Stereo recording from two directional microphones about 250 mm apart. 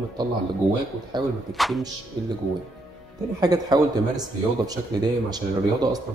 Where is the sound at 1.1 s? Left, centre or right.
Centre.